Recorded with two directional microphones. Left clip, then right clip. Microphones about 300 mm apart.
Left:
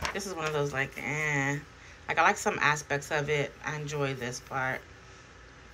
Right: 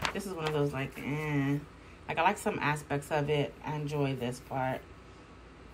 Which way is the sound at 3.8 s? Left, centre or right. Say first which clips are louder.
Even; left.